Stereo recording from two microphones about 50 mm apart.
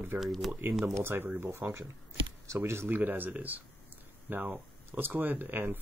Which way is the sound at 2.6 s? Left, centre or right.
Right.